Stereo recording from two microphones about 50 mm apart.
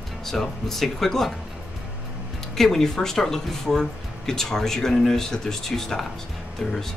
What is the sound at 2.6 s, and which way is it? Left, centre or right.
Speech, centre.